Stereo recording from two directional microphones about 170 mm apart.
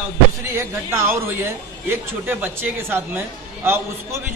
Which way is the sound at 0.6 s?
15° right (ahead or behind).